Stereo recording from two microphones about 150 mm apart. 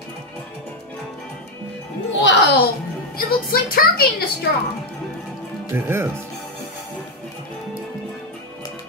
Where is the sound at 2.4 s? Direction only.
90° left.